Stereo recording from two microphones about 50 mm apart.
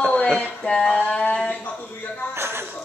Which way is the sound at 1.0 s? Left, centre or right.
Left.